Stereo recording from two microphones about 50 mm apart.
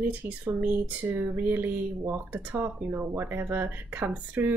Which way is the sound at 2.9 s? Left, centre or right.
Right.